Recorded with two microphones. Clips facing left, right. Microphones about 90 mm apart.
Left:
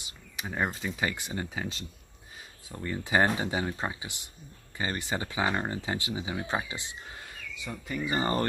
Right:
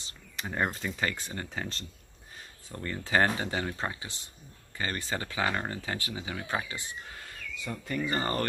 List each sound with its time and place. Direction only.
0.0 s speech: 5° left (ahead or behind); by 7.3 s 20° left (ahead or behind)
7.6 s speech: 5° left (ahead or behind)